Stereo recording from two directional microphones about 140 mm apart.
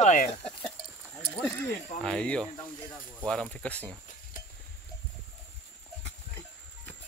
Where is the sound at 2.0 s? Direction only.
5° left (ahead or behind).